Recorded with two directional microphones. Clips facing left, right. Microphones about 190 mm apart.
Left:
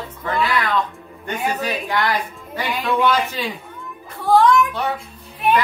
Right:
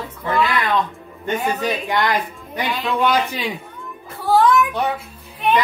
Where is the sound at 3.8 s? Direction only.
Centre (ahead or behind).